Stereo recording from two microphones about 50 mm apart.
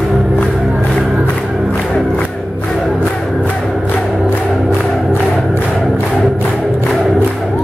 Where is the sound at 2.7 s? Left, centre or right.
Centre.